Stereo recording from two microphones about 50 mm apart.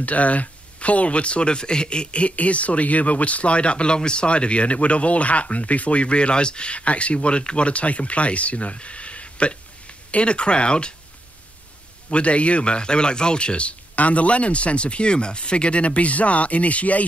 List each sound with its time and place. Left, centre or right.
0.0 s speech: left
12.1 s speech: left